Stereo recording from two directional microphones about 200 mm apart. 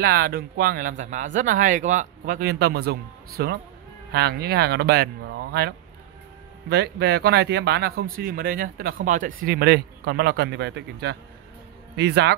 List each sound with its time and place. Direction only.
0.0 s speech: 50° right (ahead or behind)